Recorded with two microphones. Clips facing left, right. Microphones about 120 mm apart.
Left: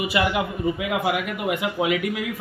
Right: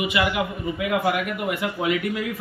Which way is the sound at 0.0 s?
30° left (ahead or behind).